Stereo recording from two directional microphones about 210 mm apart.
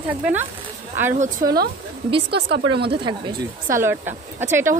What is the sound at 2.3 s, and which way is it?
Speech, 50° right (ahead or behind).